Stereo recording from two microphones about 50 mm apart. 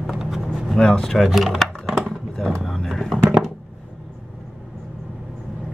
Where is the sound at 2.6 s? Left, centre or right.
Centre.